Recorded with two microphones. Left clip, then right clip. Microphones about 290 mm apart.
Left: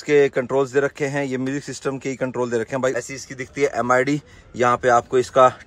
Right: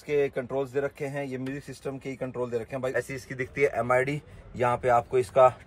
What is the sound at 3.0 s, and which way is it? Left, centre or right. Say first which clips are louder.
Speech: left 2 dB; centre.